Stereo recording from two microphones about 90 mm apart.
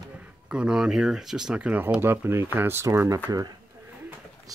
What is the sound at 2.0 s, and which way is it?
Speech, 25° right (ahead or behind).